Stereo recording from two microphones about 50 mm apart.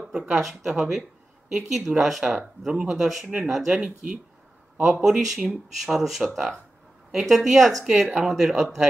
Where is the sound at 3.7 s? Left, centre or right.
Centre.